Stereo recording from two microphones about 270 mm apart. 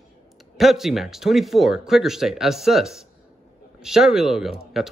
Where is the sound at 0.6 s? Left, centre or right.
Centre.